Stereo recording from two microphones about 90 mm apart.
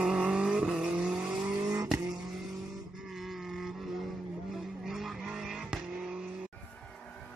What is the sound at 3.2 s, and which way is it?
Livestock, 5° right (ahead or behind).